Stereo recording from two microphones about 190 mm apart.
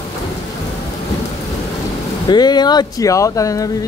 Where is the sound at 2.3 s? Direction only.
20° left (ahead or behind).